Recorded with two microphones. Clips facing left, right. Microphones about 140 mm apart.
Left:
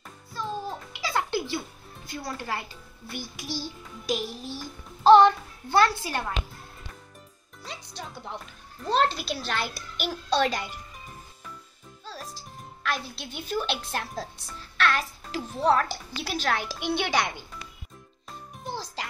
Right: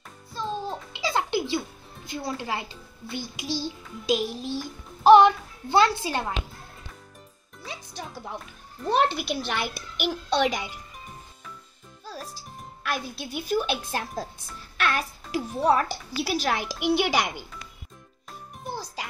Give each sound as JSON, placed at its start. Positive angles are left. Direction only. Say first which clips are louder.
{"t": 0.3, "sound": "music", "louder": "right 2 dB", "side_deg": -20}
{"t": 2.0, "sound": "a child's voice", "louder": "right 3 dB", "side_deg": -15}
{"t": 3.6, "sound": "a child's voice", "louder": "right 4 dB", "side_deg": -20}
{"t": 8.0, "sound": "a child's voice", "louder": "right 2 dB", "side_deg": -10}
{"t": 12.1, "sound": "music", "louder": "right 2 dB", "side_deg": -10}
{"t": 14.8, "sound": "a woman's voice", "louder": "left 1 dB", "side_deg": -10}
{"t": 18.7, "sound": "music", "louder": "even", "side_deg": -10}